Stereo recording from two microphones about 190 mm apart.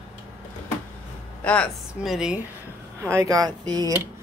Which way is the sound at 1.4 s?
5° left (ahead or behind).